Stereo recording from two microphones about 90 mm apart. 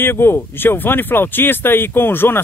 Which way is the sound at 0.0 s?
25° left (ahead or behind).